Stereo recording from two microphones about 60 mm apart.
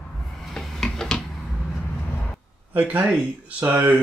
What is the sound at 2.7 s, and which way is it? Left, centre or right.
Speech, right.